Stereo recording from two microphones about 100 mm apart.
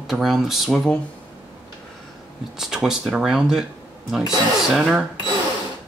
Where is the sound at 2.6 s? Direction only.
5° right (ahead or behind).